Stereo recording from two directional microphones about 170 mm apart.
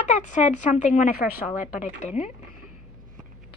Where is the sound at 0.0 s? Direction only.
45° left (ahead or behind).